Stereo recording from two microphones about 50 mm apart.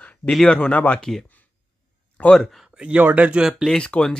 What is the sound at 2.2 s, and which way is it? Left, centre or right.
Speech, left.